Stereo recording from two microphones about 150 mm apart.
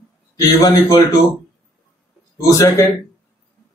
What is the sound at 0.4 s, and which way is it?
Speech, 20° left (ahead or behind).